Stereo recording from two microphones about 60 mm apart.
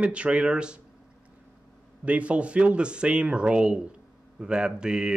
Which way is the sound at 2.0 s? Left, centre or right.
Right.